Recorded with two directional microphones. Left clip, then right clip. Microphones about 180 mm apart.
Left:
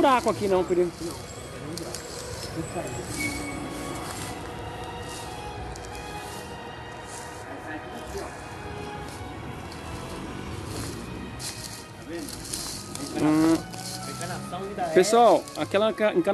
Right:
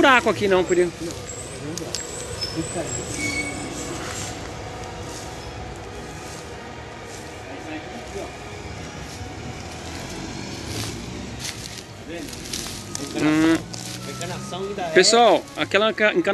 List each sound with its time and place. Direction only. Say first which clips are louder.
0.0 s speech: right 5 dB; 5° left (ahead or behind)
13.2 s speech: right 3 dB; 10° left (ahead or behind)
15.0 s speech: right 3 dB; 15° left (ahead or behind)